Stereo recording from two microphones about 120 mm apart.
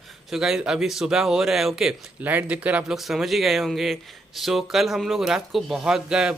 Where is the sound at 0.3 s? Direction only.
5° right (ahead or behind).